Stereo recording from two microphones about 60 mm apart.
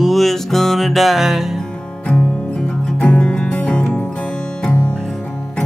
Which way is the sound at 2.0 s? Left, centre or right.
Centre.